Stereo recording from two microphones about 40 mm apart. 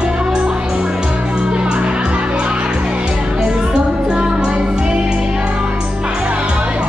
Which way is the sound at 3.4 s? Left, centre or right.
Right.